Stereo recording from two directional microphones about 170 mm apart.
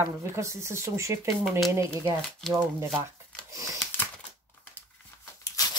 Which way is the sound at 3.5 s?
20° right (ahead or behind).